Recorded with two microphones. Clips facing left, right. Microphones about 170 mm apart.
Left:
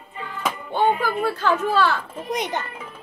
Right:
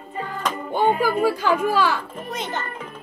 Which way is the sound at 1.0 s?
10° right (ahead or behind).